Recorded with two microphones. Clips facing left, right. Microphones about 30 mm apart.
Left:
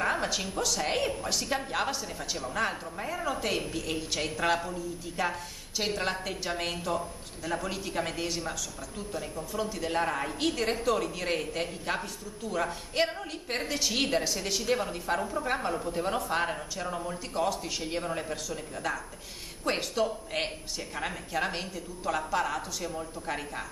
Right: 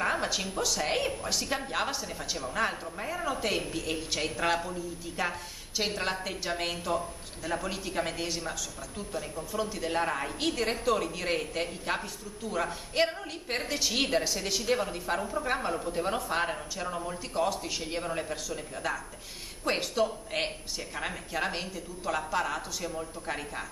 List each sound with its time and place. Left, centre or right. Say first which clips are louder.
0.0 s a woman's voice: even; centre